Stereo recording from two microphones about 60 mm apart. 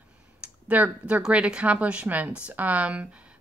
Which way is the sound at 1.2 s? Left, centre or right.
Centre.